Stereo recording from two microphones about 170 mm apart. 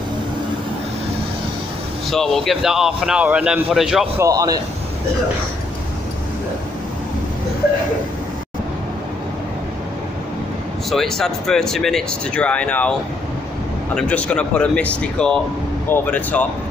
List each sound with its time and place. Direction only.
2.0 s a man's voice: centre (ahead or behind)
4.2 s a man's voice: 20° right (ahead or behind)
10.9 s a man's voice: centre (ahead or behind)
13.9 s a man's voice: 5° left (ahead or behind)